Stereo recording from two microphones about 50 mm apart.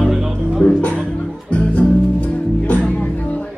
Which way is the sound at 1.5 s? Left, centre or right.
Left.